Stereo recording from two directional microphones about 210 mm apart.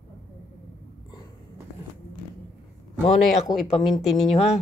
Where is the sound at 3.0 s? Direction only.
35° left (ahead or behind).